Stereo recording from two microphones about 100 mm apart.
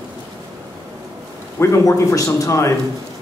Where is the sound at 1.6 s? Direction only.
30° left (ahead or behind).